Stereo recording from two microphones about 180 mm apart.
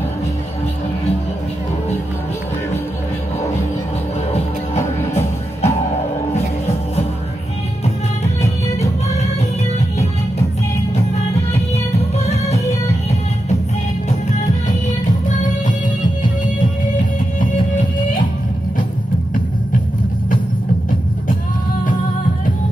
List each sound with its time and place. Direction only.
4.3 s music: 35° left (ahead or behind)
12.3 s music: 35° left (ahead or behind)
15.0 s music: 45° left (ahead or behind)